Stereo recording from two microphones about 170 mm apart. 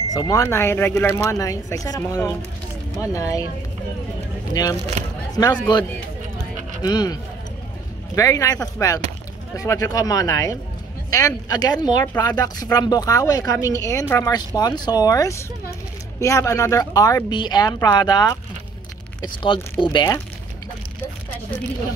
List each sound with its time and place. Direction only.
0.1 s speech: 20° left (ahead or behind)
4.6 s speech: 25° left (ahead or behind)
6.8 s speech: 25° left (ahead or behind)
8.2 s speech: 20° left (ahead or behind)